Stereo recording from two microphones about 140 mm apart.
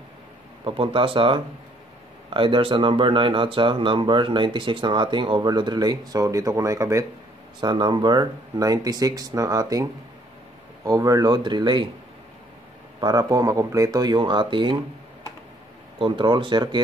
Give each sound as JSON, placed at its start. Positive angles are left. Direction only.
{"t": 0.7, "sound": "speech", "side_deg": -40}
{"t": 7.6, "sound": "speech", "side_deg": -35}
{"t": 13.0, "sound": "speech", "side_deg": -25}
{"t": 16.0, "sound": "speech", "side_deg": -35}